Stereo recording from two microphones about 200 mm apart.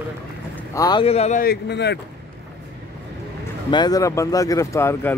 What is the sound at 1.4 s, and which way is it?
Speech, 55° left (ahead or behind).